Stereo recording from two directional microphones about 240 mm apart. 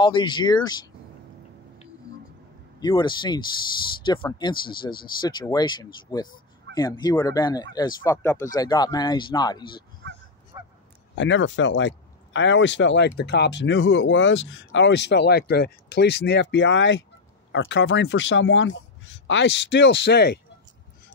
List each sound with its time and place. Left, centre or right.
0.0 s speech: centre
2.8 s speech: centre
10.5 s honk: centre
11.1 s speech: left